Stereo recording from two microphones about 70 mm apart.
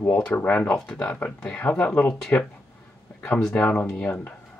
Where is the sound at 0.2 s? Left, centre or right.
Left.